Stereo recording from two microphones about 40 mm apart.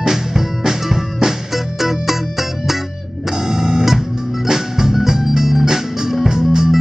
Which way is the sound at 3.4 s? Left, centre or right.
Centre.